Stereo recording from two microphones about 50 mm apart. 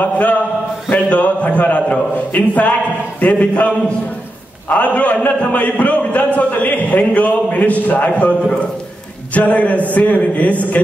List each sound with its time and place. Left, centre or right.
0.0 s a man's voice: left